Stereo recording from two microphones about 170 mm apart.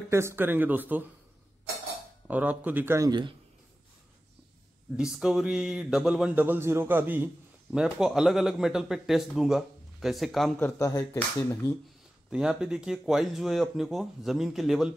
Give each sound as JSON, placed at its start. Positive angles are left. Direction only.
{"t": 0.1, "sound": "a man's voice", "side_deg": -15}
{"t": 2.2, "sound": "a man's voice", "side_deg": -10}
{"t": 4.9, "sound": "speech", "side_deg": -5}
{"t": 10.6, "sound": "speech", "side_deg": 20}
{"t": 12.3, "sound": "speech", "side_deg": -5}